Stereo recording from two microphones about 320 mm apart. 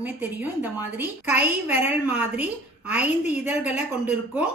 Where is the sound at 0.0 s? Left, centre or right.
Centre.